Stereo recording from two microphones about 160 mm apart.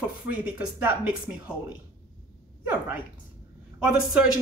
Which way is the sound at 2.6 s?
10° right (ahead or behind).